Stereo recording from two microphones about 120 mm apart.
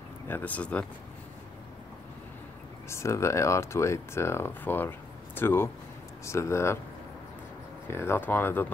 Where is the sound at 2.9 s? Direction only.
25° left (ahead or behind).